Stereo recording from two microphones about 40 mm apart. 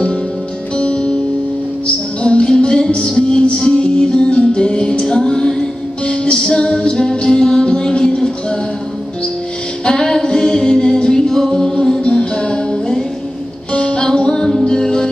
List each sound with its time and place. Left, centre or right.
2.2 s music: left
9.8 s music: centre
12.0 s music: left